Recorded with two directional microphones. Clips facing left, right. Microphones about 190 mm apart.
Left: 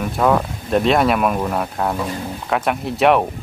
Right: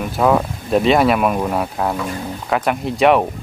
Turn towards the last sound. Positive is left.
turn(degrees=0)  # may be behind; listen again after turning